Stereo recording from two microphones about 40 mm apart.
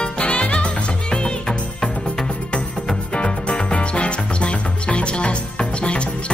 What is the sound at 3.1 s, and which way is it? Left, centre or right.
Music, left.